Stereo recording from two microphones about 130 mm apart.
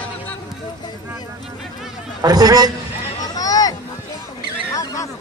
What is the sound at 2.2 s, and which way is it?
Speech, 30° right (ahead or behind).